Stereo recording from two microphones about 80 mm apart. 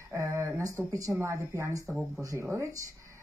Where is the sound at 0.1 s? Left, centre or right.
Right.